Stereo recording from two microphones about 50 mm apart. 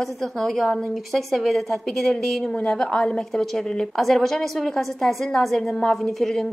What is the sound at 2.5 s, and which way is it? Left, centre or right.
A woman's voice, left.